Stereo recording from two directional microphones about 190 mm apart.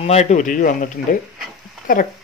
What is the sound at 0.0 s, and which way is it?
Speech, 35° left (ahead or behind).